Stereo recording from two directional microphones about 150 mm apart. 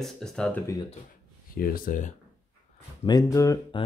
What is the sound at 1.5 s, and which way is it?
Speech, 70° left (ahead or behind).